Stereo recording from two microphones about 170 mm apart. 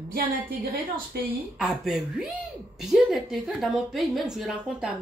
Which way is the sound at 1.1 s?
70° right (ahead or behind).